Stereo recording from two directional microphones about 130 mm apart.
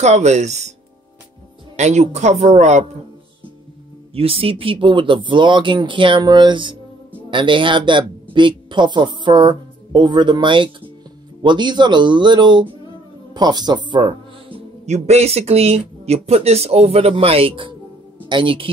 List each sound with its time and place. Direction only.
0.0 s speech: 60° right (ahead or behind)
1.8 s speech: 60° right (ahead or behind)
4.1 s speech: 45° right (ahead or behind)
14.9 s speech: 55° right (ahead or behind)